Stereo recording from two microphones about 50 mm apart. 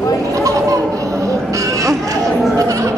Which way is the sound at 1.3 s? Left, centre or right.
Right.